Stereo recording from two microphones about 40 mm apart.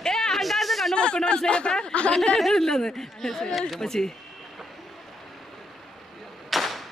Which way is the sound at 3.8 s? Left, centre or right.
Centre.